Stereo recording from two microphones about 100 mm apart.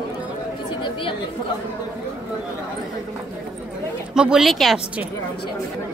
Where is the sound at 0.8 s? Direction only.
55° left (ahead or behind).